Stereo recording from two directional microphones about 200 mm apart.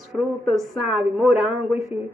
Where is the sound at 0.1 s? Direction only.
Centre (ahead or behind).